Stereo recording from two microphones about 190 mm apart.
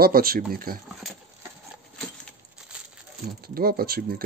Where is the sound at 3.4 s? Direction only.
55° right (ahead or behind).